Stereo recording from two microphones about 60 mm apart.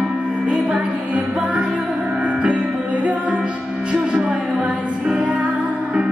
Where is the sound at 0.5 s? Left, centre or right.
Centre.